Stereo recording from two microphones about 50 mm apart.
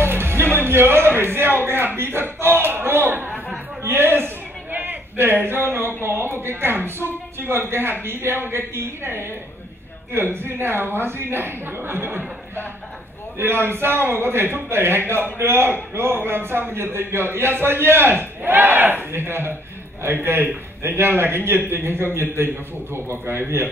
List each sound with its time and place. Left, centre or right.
0.0 s music: right
0.7 s a man's voice: right
3.8 s a sound: right
5.1 s a man's voice: right
5.7 s a sound: right
7.3 s a man's voice: right
13.4 s a man's voice: right